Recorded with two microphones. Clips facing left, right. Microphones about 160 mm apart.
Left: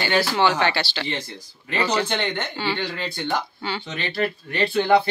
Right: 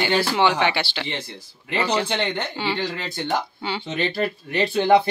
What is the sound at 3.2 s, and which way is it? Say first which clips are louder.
Speech: right 2 dB; 20° right (ahead or behind).